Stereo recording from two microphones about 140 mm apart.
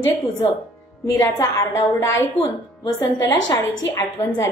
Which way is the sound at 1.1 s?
25° left (ahead or behind).